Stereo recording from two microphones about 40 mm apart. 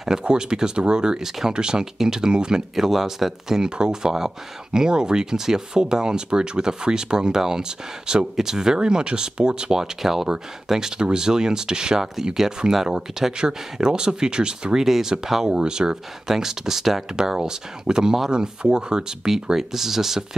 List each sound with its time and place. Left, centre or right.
0.2 s speech: right
2.7 s speech: centre
15.5 s speech: centre